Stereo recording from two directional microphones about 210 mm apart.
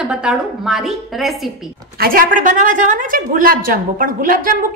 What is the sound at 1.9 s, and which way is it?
A woman's voice, 45° right (ahead or behind).